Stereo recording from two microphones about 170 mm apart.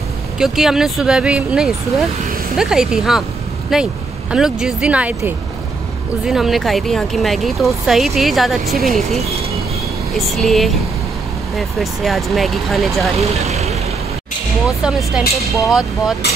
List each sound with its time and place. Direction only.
0.4 s speech: 5° right (ahead or behind)
13.2 s speech: 40° right (ahead or behind)
14.8 s speech: 5° right (ahead or behind)